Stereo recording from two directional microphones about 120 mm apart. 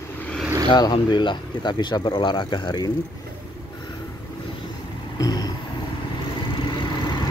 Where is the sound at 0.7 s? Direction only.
40° left (ahead or behind).